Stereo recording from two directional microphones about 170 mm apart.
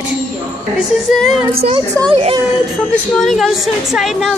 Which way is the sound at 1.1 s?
Centre (ahead or behind).